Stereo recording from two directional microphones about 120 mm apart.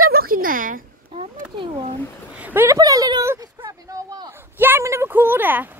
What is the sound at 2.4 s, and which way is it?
Speech, 20° right (ahead or behind).